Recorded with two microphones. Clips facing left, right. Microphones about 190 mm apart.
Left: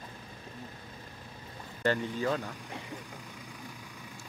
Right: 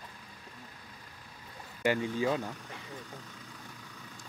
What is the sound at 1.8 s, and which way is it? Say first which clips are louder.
Speech: right 1 dB; 10° right (ahead or behind).